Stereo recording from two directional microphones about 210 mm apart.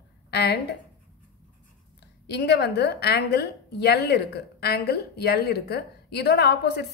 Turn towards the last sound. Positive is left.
turn(degrees=50)  # may be behind; listen again after turning